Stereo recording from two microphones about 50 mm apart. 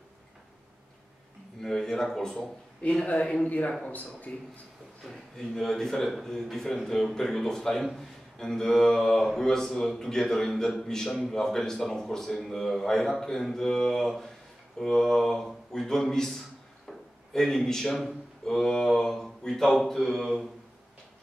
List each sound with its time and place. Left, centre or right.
1.6 s speech: centre
2.8 s a man's voice: left
5.0 s a man's voice: centre
16.8 s drawer open or close: centre
18.4 s a sound: centre